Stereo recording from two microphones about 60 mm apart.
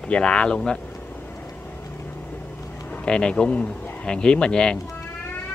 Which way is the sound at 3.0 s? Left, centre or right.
Centre.